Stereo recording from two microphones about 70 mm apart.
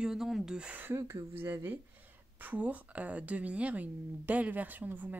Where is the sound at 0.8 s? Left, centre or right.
Right.